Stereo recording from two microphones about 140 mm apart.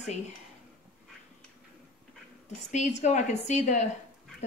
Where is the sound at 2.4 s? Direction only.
55° left (ahead or behind).